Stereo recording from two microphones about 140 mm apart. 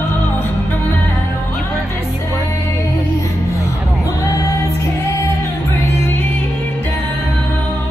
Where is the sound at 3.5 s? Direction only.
25° left (ahead or behind).